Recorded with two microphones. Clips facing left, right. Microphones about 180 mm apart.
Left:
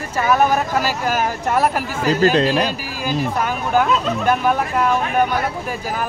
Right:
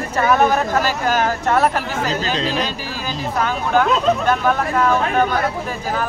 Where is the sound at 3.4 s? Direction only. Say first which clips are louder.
Right 3 dB; 10° left (ahead or behind).